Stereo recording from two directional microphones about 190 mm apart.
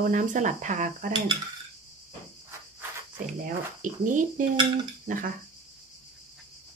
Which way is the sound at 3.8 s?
45° right (ahead or behind).